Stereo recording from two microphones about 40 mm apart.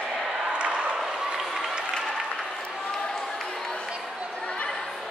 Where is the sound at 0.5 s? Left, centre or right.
Right.